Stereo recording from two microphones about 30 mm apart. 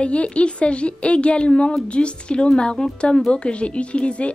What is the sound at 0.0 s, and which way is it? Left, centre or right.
A woman's voice, left.